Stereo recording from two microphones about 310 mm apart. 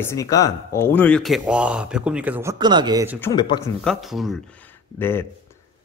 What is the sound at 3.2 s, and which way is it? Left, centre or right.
Speech, centre.